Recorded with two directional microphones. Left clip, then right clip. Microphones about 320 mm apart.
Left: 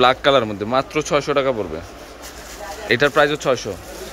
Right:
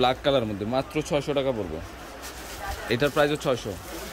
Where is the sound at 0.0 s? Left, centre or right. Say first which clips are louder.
Left 8 dB; centre.